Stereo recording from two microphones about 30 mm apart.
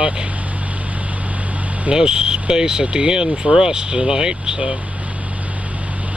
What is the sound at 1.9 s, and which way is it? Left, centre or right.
Speech, right.